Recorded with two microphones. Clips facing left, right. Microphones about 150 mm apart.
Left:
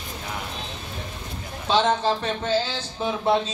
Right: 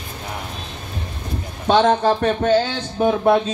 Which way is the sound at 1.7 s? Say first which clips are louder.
Right 6 dB; 55° right (ahead or behind).